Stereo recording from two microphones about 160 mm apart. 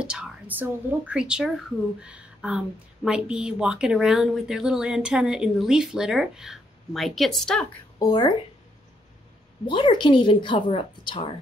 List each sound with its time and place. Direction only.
0.0 s a woman's voice: 5° right (ahead or behind)
8.0 s speech: 25° left (ahead or behind)
9.7 s a woman's voice: 30° left (ahead or behind)